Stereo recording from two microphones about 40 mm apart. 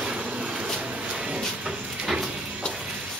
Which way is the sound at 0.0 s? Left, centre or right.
Right.